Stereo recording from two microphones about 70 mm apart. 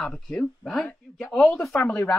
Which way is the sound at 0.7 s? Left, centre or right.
Centre.